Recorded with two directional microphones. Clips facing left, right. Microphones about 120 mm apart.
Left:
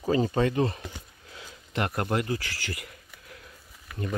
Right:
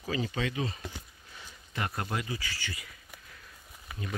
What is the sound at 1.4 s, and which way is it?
Speech, 65° left (ahead or behind).